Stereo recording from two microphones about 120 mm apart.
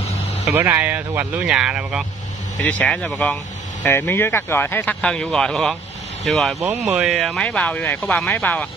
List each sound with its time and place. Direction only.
0.5 s speech: 15° right (ahead or behind)
2.6 s speech: 10° left (ahead or behind)
5.0 s a man's voice: 5° left (ahead or behind)
7.4 s speech: 10° left (ahead or behind)